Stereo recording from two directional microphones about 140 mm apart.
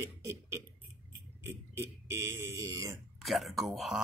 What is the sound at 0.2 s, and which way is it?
Beatboxing, 20° right (ahead or behind).